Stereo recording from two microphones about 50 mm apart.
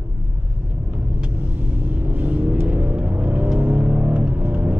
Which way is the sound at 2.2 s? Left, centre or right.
Right.